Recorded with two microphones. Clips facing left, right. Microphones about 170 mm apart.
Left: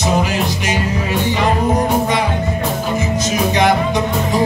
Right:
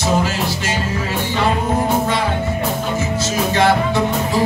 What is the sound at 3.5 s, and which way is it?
Music, 15° left (ahead or behind).